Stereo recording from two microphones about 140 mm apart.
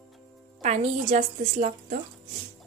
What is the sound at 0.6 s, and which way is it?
A woman's voice, 55° right (ahead or behind).